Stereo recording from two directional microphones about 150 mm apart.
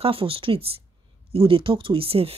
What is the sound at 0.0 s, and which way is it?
A woman's voice, 40° right (ahead or behind).